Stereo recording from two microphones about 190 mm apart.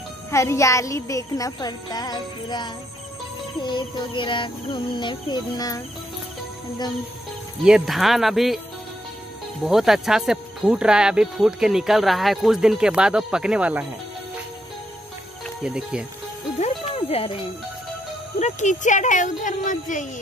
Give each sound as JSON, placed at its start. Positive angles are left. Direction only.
{"t": 0.3, "sound": "speech", "side_deg": 15}
{"t": 3.6, "sound": "music", "side_deg": 25}
{"t": 7.6, "sound": "speech", "side_deg": 0}
{"t": 9.7, "sound": "speech", "side_deg": 0}
{"t": 15.4, "sound": "speech", "side_deg": -5}
{"t": 16.9, "sound": "speech", "side_deg": 30}
{"t": 18.4, "sound": "speech", "side_deg": 40}